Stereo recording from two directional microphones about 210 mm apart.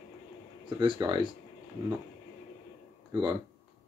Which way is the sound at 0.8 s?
20° right (ahead or behind).